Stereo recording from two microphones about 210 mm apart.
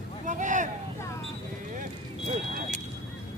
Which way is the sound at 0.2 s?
35° right (ahead or behind).